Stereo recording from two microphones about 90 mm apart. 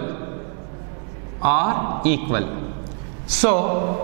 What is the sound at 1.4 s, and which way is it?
A man's voice, 10° right (ahead or behind).